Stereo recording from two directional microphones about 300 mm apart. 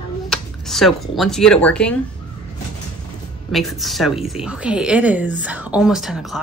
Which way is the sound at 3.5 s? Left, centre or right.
Centre.